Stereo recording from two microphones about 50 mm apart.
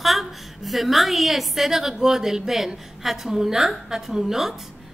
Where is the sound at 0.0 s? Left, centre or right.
Centre.